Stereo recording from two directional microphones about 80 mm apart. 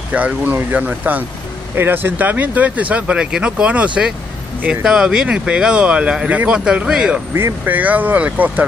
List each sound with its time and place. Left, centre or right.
0.1 s speech: centre
7.3 s speech: right